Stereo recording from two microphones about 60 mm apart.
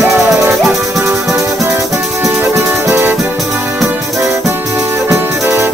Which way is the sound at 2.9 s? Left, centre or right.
Right.